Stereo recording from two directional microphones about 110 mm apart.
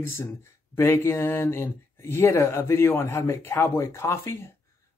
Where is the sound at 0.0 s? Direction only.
25° left (ahead or behind).